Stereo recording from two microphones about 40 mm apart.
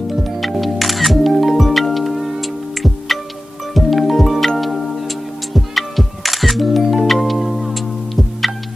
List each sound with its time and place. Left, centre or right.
0.2 s music: centre